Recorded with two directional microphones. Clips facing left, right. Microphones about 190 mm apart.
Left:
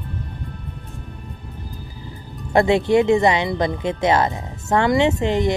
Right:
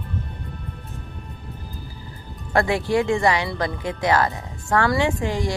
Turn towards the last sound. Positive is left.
turn(degrees=20)  # may be behind; listen again after turning